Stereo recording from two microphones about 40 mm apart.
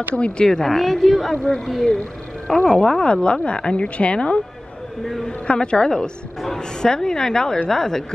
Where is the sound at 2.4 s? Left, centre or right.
Left.